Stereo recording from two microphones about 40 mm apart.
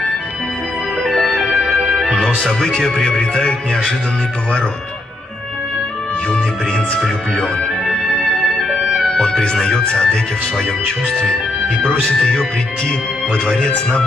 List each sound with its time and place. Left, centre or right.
0.9 s music: centre
1.8 s music: centre
2.3 s speech: centre
6.2 s music: left
8.2 s music: centre
9.1 s speech: centre
12.2 s speech: centre